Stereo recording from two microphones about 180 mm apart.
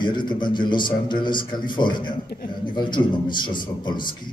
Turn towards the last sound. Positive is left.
turn(degrees=25)  # may be behind; listen again after turning